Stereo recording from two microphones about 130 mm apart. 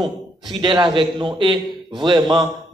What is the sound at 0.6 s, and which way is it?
A man's voice, 35° right (ahead or behind).